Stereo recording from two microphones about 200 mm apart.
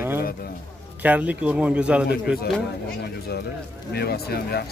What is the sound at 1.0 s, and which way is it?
Speech, 5° right (ahead or behind).